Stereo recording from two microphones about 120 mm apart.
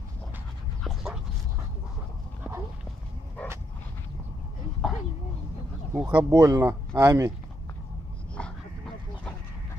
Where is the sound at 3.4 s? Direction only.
10° left (ahead or behind).